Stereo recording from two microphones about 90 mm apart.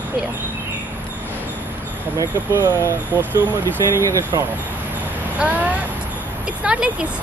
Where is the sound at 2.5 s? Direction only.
30° right (ahead or behind).